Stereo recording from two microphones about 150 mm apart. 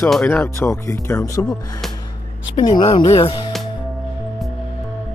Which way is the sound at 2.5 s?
30° left (ahead or behind).